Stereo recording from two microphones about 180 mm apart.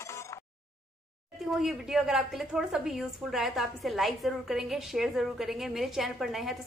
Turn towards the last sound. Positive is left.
turn(degrees=0)  # may be behind; listen again after turning